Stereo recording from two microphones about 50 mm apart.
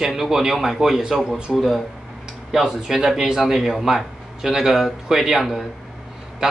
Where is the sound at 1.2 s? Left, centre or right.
Centre.